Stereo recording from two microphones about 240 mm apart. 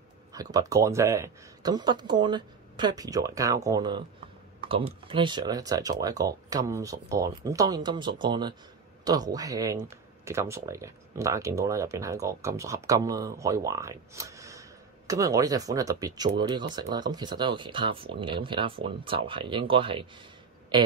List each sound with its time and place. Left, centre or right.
0.3 s speech: centre
4.6 s typing: right
5.0 s speech: centre